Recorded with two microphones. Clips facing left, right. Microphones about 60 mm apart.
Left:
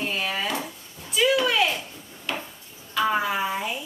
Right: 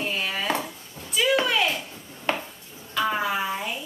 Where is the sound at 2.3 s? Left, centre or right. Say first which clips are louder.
Right 4 dB; right.